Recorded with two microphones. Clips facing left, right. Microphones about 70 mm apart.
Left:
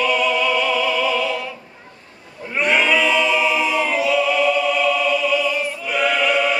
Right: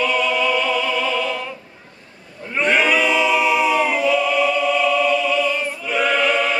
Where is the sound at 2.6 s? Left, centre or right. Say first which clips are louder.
Even; centre.